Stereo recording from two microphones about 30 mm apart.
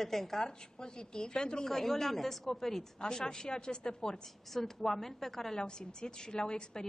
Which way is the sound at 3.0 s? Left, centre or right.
Left.